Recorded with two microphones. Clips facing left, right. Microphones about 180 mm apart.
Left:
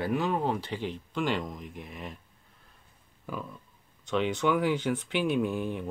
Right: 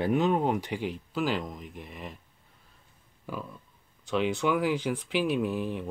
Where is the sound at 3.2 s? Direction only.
Centre (ahead or behind).